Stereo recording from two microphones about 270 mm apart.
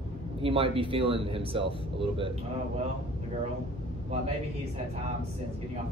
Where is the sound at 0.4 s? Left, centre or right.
Centre.